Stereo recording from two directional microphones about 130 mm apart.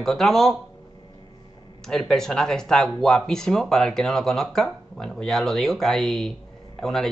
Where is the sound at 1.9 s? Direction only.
5° left (ahead or behind).